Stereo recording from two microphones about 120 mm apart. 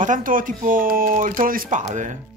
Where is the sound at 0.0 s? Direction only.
90° right.